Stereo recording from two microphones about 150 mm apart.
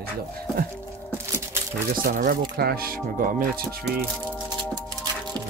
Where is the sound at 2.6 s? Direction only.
85° right; by 3.6 s 65° right (ahead or behind).